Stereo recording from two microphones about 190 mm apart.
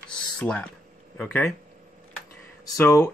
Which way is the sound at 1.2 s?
5° left (ahead or behind).